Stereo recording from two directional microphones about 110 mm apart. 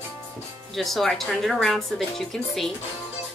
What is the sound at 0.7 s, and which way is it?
Speech, centre (ahead or behind).